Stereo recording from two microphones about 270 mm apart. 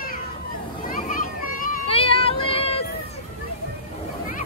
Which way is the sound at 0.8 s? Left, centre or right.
Left.